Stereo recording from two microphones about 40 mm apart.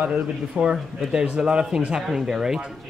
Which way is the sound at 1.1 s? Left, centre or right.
Centre.